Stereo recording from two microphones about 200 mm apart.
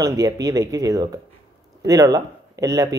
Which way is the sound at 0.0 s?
15° right (ahead or behind).